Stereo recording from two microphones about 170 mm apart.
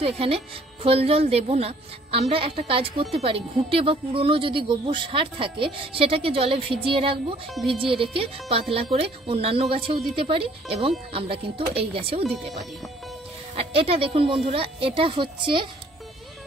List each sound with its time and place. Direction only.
0.0 s a woman's voice: 35° right (ahead or behind)